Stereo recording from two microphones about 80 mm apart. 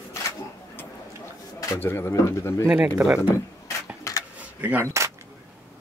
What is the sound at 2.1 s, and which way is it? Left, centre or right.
Speech, left.